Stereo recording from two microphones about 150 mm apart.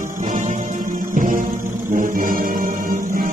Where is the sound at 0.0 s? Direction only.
55° right (ahead or behind).